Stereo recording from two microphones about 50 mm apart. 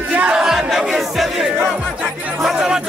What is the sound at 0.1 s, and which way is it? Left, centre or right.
Battle cry, right.